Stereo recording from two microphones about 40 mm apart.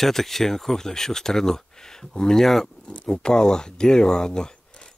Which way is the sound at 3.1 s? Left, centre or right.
Centre.